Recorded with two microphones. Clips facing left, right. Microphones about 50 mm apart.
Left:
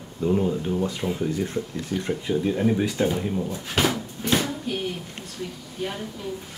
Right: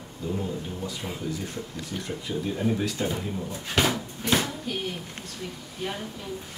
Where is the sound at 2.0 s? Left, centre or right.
Left.